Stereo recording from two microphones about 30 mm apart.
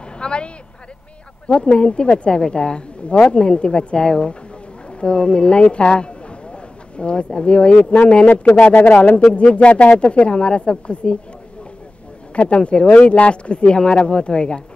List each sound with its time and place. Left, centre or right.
0.2 s speech: left
1.5 s speech: left
8.5 s speech: left
9.3 s speech: left
12.4 s speech: left
12.7 s speech: left
13.3 s speech: left